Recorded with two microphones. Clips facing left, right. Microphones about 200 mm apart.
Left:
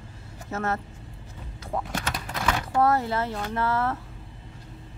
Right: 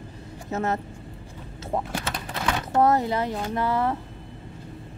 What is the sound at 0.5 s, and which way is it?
A woman's voice, 20° right (ahead or behind).